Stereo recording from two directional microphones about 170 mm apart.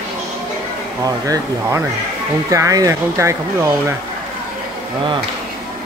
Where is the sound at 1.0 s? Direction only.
20° right (ahead or behind).